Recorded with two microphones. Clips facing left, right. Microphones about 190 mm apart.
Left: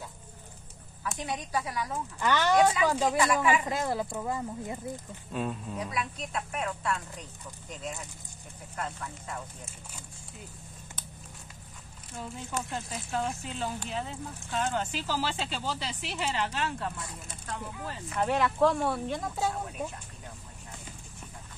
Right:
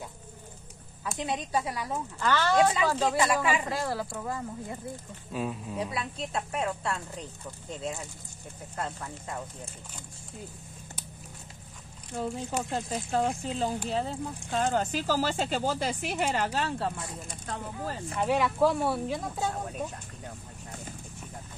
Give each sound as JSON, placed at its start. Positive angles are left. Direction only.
{"t": 1.1, "sound": "a woman's voice", "side_deg": -25}
{"t": 2.1, "sound": "speech", "side_deg": 15}
{"t": 5.3, "sound": "speech", "side_deg": -5}
{"t": 5.8, "sound": "a woman's voice", "side_deg": -30}
{"t": 8.7, "sound": "a woman's voice", "side_deg": -30}
{"t": 12.2, "sound": "speech", "side_deg": -35}
{"t": 16.4, "sound": "speech", "side_deg": -35}
{"t": 18.2, "sound": "speech", "side_deg": -5}